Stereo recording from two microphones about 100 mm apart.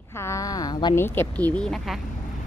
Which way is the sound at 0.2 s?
30° left (ahead or behind).